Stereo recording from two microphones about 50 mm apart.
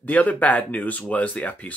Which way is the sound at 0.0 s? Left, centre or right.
Left.